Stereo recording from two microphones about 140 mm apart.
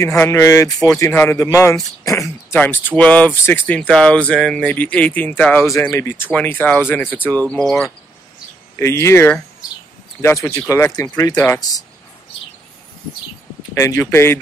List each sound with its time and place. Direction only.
0.0 s speech: 20° left (ahead or behind)
2.5 s speech: 15° left (ahead or behind)
8.7 s speech: 20° left (ahead or behind)
13.7 s speech: 20° left (ahead or behind)